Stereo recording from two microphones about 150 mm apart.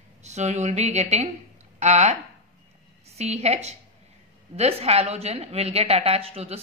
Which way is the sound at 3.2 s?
45° right (ahead or behind).